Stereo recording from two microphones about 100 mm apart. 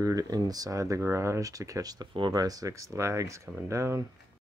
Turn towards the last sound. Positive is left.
turn(degrees=-30)  # may be behind; listen again after turning